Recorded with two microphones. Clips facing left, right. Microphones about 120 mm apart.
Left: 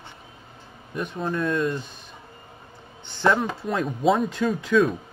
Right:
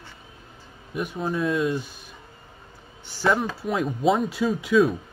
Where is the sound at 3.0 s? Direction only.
5° right (ahead or behind).